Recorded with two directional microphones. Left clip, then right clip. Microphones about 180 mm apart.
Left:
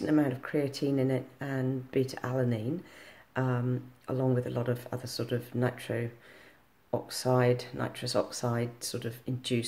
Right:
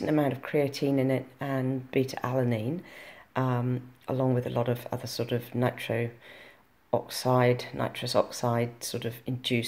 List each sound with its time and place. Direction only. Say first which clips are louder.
0.0 s speech: right 1 dB; 5° right (ahead or behind)